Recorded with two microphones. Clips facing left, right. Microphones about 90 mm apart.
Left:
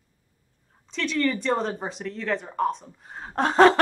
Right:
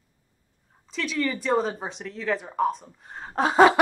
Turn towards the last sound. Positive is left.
turn(degrees=-5)  # may be behind; listen again after turning